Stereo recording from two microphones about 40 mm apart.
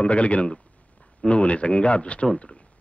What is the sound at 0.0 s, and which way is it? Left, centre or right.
Speech, left.